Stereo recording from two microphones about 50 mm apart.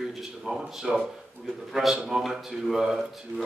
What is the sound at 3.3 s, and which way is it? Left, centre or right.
Speech, right.